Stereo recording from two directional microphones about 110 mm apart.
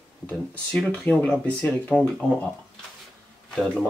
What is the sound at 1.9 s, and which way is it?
Speech, 15° right (ahead or behind).